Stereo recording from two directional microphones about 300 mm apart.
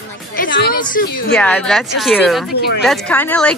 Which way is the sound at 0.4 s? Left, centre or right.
Left.